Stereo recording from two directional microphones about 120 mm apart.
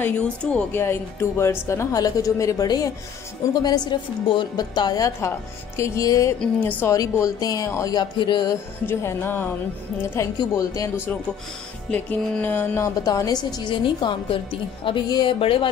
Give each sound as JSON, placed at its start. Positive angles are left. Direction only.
{"t": 0.0, "sound": "music", "side_deg": 15}
{"t": 1.4, "sound": "a woman's voice", "side_deg": 20}
{"t": 6.6, "sound": "music", "side_deg": 15}
{"t": 6.9, "sound": "a woman's voice", "side_deg": 30}
{"t": 8.8, "sound": "music", "side_deg": 20}
{"t": 10.1, "sound": "speech", "side_deg": 25}
{"t": 11.9, "sound": "music", "side_deg": 15}
{"t": 13.0, "sound": "a woman's voice", "side_deg": 30}